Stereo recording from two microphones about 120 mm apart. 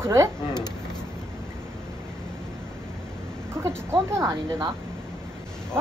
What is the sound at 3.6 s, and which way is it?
A woman's voice, 25° right (ahead or behind).